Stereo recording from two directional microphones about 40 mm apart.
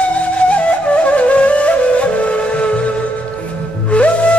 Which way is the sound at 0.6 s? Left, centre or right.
Left.